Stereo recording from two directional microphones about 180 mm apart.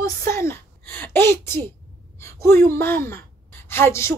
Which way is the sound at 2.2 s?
15° left (ahead or behind).